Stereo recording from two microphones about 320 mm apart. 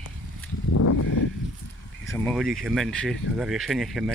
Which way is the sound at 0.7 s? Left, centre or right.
Left.